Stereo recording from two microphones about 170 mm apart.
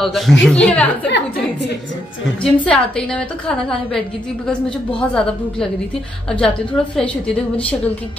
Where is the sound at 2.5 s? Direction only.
5° left (ahead or behind).